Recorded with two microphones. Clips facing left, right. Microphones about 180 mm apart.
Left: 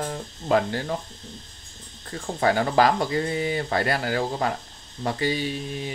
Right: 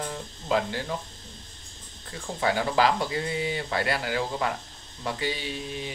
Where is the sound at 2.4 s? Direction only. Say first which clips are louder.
Left 4 dB; 45° left (ahead or behind).